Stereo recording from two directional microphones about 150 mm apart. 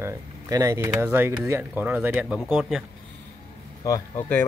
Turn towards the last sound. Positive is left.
turn(degrees=20)  # may be behind; listen again after turning